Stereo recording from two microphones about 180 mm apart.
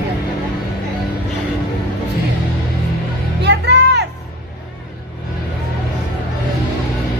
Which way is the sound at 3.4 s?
70° right (ahead or behind).